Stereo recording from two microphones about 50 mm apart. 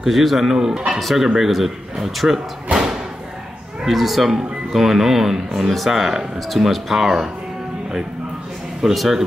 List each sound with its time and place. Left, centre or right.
0.0 s speech: centre
8.9 s speech: centre